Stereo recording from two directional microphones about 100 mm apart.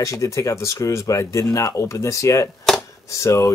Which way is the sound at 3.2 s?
30° left (ahead or behind).